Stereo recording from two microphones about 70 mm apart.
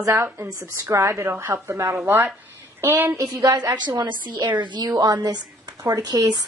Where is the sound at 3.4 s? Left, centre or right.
Right.